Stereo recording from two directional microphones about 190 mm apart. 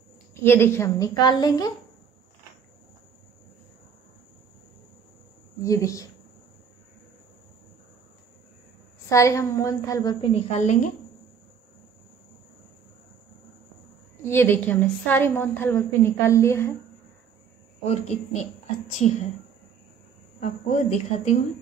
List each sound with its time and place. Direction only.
0.3 s a woman's voice: 10° left (ahead or behind)
5.6 s speech: 15° left (ahead or behind)
9.1 s a woman's voice: 15° left (ahead or behind)
10.3 s a woman's voice: 40° left (ahead or behind)
14.3 s a woman's voice: 10° left (ahead or behind)
17.8 s a woman's voice: 35° left (ahead or behind)
20.3 s a woman's voice: 40° left (ahead or behind)